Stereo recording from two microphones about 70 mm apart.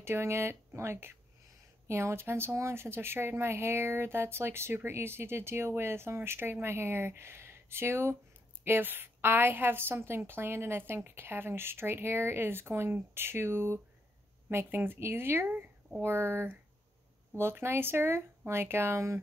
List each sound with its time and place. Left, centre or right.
0.0 s speech: right